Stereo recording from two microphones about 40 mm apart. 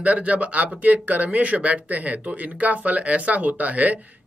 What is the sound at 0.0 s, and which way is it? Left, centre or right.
Speech, right.